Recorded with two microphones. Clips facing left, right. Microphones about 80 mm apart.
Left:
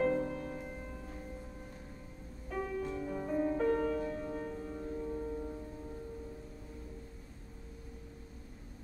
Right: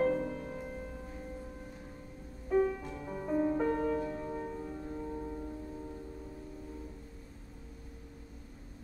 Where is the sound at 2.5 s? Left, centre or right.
Centre.